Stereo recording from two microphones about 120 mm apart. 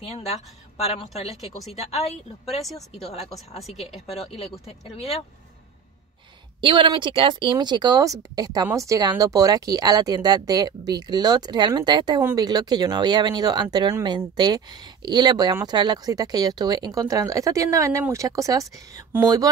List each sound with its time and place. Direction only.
0.7 s a woman's voice: 60° left (ahead or behind)
3.5 s speech: centre (ahead or behind)
4.3 s a woman's voice: 55° left (ahead or behind)
6.6 s speech: 40° right (ahead or behind)